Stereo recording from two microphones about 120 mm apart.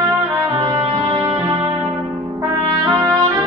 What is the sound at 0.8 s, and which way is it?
Music, 45° right (ahead or behind).